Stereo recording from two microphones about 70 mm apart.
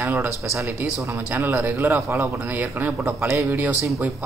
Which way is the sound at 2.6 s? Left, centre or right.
Right.